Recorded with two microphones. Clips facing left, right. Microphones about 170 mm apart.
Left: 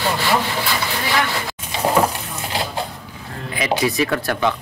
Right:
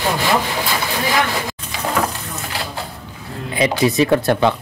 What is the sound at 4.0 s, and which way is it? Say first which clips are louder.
Speech: right 5 dB; 25° right (ahead or behind).